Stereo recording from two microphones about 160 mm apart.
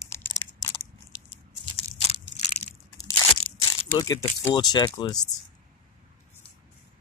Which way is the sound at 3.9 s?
25° left (ahead or behind).